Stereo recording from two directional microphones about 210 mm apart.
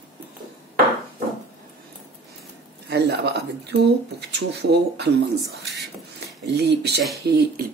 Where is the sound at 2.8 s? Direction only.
50° right (ahead or behind).